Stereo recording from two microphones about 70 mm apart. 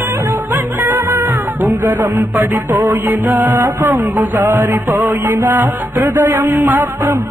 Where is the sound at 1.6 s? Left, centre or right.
Right.